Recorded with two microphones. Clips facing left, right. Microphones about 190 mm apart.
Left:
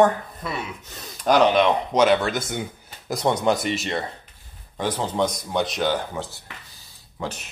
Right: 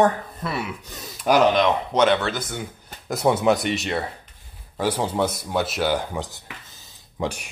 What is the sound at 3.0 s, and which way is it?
A man's voice, 5° right (ahead or behind).